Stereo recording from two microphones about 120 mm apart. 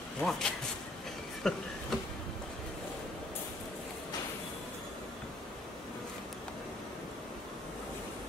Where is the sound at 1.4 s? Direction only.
5° left (ahead or behind).